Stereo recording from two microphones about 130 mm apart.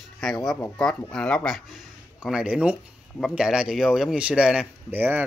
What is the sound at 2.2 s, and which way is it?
Speech, 5° right (ahead or behind).